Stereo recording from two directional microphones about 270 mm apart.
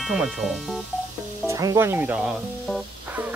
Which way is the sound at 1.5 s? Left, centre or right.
Centre.